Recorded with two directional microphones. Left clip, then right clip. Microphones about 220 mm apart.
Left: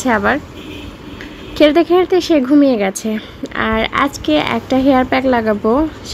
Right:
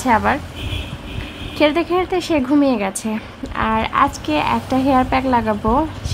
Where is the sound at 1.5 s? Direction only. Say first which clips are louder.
Left 6 dB; 15° left (ahead or behind).